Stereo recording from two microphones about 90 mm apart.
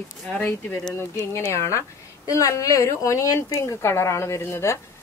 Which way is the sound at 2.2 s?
40° left (ahead or behind).